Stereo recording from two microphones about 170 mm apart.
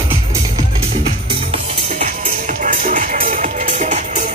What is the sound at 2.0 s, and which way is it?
Music, 50° right (ahead or behind).